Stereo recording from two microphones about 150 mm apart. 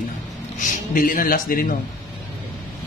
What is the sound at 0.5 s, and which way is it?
A man's voice, 60° left (ahead or behind).